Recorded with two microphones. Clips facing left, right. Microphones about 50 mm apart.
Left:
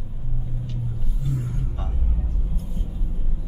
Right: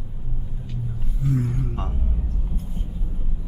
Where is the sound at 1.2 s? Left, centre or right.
Right.